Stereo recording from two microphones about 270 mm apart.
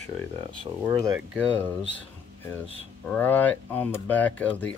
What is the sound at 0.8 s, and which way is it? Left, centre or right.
Speech, centre.